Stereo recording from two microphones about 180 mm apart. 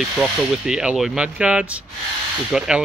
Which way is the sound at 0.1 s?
Centre (ahead or behind).